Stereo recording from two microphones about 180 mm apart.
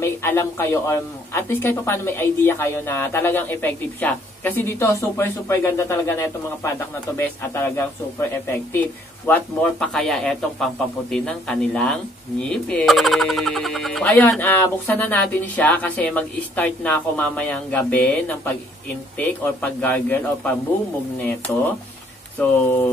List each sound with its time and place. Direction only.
0.0 s speech: 15° left (ahead or behind)
22.4 s speech: 10° left (ahead or behind)